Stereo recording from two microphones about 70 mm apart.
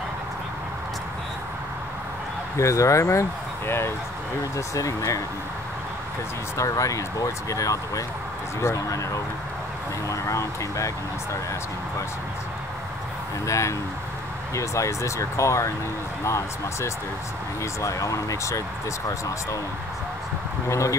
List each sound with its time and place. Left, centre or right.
2.5 s speech: left
4.6 s speech: left
6.5 s speech: left
13.5 s speech: left
20.6 s speech: left